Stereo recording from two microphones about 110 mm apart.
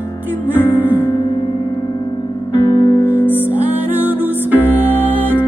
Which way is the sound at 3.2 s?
20° left (ahead or behind).